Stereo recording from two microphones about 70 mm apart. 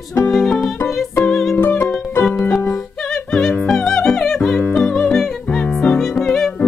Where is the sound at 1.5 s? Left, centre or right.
Left.